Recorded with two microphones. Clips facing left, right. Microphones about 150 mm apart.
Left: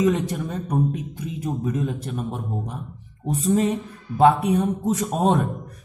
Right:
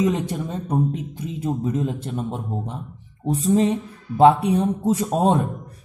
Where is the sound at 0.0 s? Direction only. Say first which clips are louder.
Left 1 dB; 30° right (ahead or behind).